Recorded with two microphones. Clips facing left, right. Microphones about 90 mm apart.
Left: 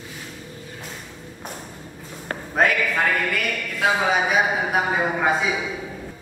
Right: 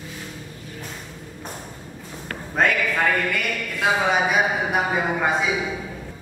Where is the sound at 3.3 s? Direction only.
Centre (ahead or behind).